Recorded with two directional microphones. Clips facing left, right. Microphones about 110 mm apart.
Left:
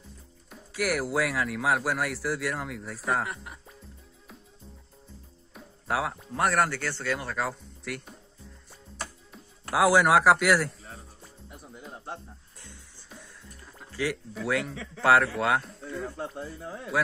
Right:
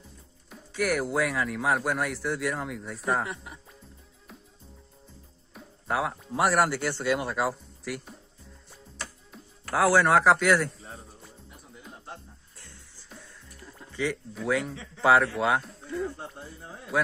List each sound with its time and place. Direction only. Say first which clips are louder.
0.5 s speech: right 1 dB; centre (ahead or behind)
5.5 s speech: even; centre (ahead or behind)
9.7 s speech: left 1 dB; 15° left (ahead or behind)
13.1 s music: even; centre (ahead or behind)
13.9 s speech: even; centre (ahead or behind)
16.2 s music: left 6 dB; 90° left